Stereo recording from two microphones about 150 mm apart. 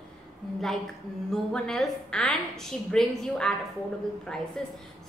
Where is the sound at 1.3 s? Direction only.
5° left (ahead or behind).